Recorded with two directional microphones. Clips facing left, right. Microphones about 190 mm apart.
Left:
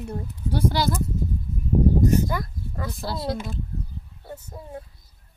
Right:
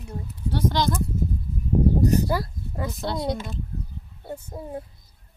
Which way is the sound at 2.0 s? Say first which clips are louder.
Even; 35° right (ahead or behind).